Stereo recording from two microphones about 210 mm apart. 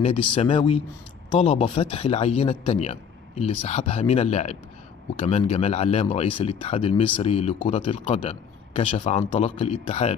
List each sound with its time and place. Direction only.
0.3 s a man's voice: 25° left (ahead or behind)